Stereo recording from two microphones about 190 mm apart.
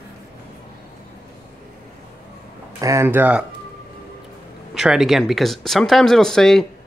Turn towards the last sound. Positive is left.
turn(degrees=0)  # may be behind; listen again after turning